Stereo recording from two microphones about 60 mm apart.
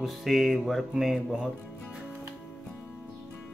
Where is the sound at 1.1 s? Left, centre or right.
Centre.